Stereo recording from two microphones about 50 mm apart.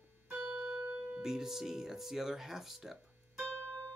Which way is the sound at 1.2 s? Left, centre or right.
Centre.